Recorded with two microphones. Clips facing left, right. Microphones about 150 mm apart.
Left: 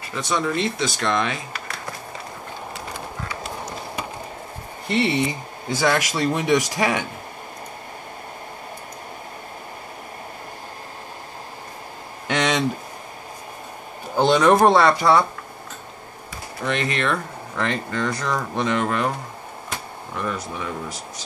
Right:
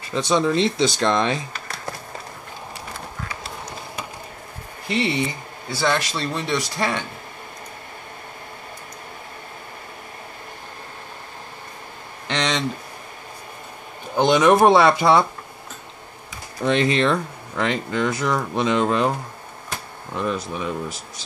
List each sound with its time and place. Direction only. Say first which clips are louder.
0.1 s speech: right 4 dB; 25° right (ahead or behind)
4.8 s speech: left 2 dB; centre (ahead or behind)
5.7 s speech: left 2 dB; 15° left (ahead or behind)
12.3 s speech: left 2 dB; 10° left (ahead or behind)
14.2 s speech: right 1 dB; 10° right (ahead or behind)
16.6 s speech: right 5 dB; 20° right (ahead or behind)
20.2 s speech: right 3 dB; 20° right (ahead or behind)